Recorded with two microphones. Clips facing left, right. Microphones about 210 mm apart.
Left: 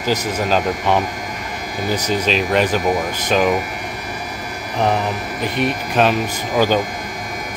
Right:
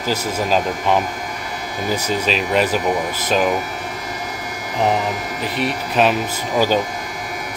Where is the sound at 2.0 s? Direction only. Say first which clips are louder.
Left 3 dB; 5° right (ahead or behind).